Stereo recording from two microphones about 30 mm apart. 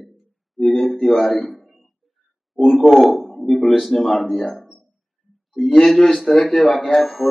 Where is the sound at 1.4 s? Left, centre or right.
Centre.